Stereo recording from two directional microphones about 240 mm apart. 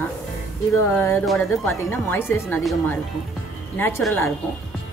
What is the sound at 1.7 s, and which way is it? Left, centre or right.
Speech, centre.